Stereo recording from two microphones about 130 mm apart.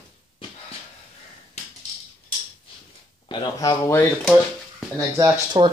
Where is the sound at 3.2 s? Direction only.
35° left (ahead or behind).